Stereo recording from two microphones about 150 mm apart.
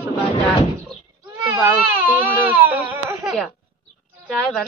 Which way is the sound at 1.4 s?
20° right (ahead or behind).